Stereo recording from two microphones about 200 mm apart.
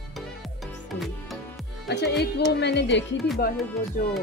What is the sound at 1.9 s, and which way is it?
Speech, 55° left (ahead or behind).